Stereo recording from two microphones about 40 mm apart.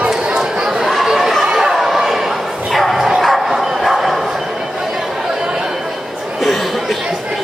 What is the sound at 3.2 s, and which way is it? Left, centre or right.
Bow-wow, centre.